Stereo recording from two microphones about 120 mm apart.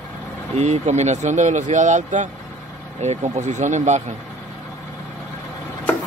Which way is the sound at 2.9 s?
70° right (ahead or behind).